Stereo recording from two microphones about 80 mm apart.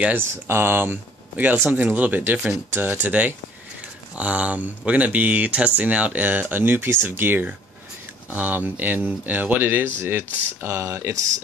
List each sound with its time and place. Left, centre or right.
0.5 s speech: right